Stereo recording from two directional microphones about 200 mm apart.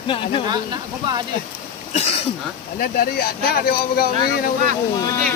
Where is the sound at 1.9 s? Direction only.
35° left (ahead or behind).